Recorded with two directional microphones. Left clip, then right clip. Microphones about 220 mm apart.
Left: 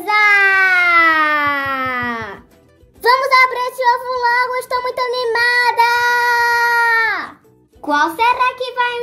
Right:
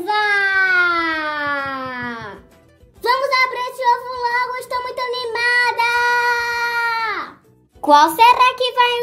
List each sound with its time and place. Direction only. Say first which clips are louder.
0.0 s baby cry: left 5 dB; 45° left (ahead or behind)
3.0 s child singing: left 5 dB; 45° left (ahead or behind)
8.2 s a child's voice: right 3 dB; 45° right (ahead or behind)